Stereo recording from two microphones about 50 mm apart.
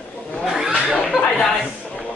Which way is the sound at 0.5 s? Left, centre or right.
Centre.